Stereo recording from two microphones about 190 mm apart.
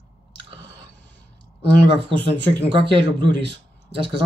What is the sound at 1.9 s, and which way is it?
Speech, 25° right (ahead or behind).